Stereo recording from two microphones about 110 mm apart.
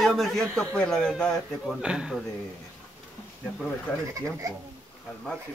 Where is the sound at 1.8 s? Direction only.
5° right (ahead or behind).